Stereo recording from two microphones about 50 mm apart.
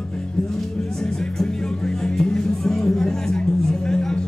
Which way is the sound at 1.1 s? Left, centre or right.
Centre.